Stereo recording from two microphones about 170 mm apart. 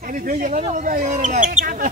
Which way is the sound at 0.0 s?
55° right (ahead or behind).